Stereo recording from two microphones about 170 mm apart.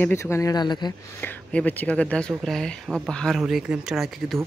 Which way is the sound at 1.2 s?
10° left (ahead or behind).